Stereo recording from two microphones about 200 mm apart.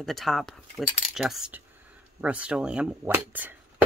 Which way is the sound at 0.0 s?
Centre (ahead or behind).